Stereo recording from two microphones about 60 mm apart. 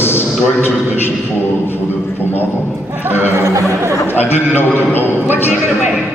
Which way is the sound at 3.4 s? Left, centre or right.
Right.